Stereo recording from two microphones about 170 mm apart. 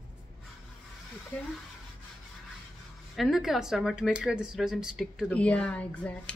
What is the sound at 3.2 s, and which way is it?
Speech, centre (ahead or behind).